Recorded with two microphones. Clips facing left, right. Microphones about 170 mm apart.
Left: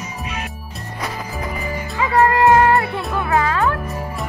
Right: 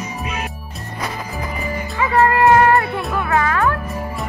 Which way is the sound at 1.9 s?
15° left (ahead or behind).